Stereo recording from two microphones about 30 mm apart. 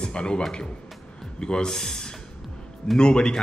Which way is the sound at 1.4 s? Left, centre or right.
Left.